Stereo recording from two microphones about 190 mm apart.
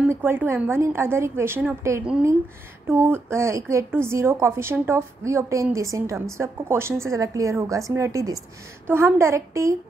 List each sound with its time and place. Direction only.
0.0 s a woman's voice: 10° right (ahead or behind)